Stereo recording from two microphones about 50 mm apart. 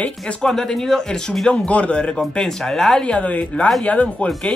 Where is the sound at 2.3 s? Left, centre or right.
Centre.